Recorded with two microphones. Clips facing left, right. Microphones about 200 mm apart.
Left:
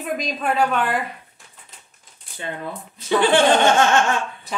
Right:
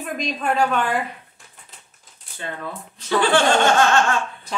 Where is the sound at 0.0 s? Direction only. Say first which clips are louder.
Left 1 dB; centre (ahead or behind).